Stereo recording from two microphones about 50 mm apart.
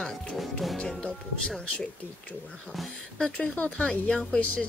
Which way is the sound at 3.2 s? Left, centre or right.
Left.